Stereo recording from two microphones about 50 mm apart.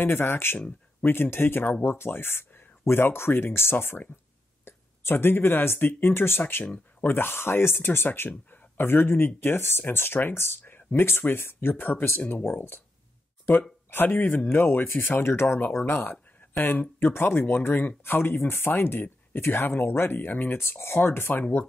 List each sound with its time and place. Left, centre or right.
0.0 s speech: left
6.6 s speech: left
13.8 s speech: left
16.3 s a sound: left
17.0 s speech: left